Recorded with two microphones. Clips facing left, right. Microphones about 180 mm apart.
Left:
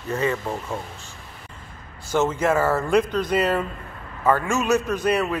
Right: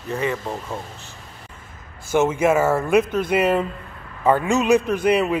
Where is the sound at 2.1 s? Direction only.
10° right (ahead or behind).